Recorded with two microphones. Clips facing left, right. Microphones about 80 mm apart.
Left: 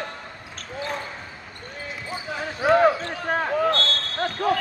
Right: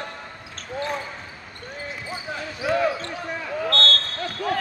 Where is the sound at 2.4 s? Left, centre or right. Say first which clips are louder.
Left 5 dB; left.